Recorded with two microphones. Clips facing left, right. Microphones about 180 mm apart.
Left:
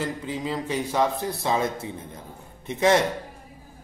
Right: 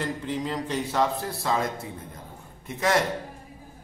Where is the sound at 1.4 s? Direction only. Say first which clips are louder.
Left 2 dB; 20° left (ahead or behind).